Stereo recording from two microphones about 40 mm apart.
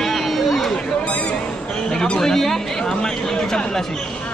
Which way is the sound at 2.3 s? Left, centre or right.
Centre.